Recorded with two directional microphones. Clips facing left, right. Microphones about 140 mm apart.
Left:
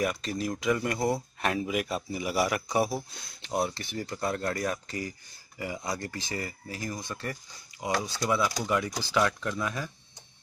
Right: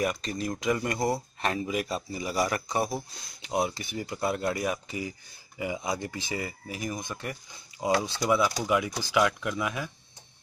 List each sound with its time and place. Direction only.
0.0 s speech: centre (ahead or behind)
3.4 s speech: 10° right (ahead or behind)
8.6 s speech: 5° right (ahead or behind)